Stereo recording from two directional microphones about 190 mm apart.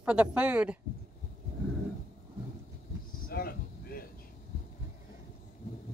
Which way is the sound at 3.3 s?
55° left (ahead or behind).